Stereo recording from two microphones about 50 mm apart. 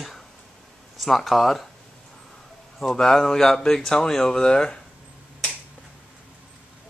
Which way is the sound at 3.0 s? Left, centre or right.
Centre.